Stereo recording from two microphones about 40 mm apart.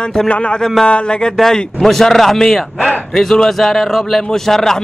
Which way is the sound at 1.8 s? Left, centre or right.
Centre.